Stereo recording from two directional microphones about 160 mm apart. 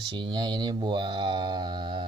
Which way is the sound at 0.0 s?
30° right (ahead or behind).